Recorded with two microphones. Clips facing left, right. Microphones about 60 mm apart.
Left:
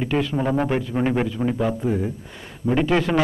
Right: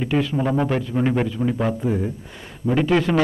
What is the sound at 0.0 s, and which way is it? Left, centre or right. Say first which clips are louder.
Speech: right 1 dB; centre.